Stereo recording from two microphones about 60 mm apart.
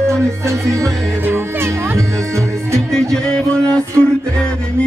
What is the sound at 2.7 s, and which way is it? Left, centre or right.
Music, centre.